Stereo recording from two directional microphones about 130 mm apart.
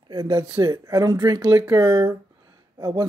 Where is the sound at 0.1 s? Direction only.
30° right (ahead or behind).